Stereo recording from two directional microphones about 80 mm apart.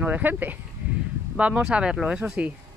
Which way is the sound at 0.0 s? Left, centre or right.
Right.